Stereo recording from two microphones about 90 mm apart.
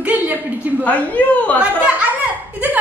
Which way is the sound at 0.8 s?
15° left (ahead or behind).